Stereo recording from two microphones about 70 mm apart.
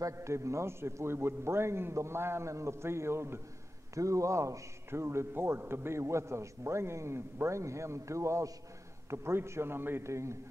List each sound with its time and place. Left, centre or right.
0.0 s a man's voice: right
3.9 s a man's voice: right